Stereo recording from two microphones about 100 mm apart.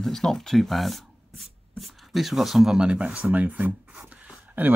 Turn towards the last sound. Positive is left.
turn(degrees=-15)  # may be behind; listen again after turning